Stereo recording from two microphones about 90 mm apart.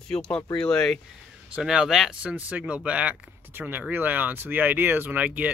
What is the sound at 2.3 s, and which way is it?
A man's voice, 15° right (ahead or behind).